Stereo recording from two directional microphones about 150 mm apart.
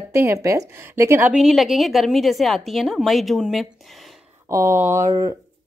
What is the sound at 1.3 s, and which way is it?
A woman's voice, centre (ahead or behind).